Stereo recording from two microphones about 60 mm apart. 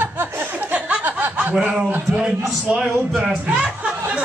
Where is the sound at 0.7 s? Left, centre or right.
Right.